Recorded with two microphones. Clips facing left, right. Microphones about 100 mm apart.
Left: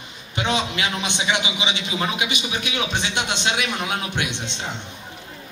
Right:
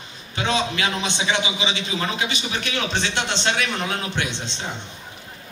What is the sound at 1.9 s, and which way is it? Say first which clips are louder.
A man's voice: left 1 dB; 15° left (ahead or behind).